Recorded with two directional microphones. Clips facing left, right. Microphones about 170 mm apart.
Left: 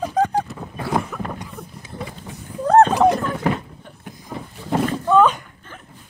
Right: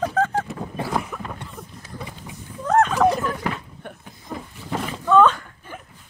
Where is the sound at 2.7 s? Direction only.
30° left (ahead or behind).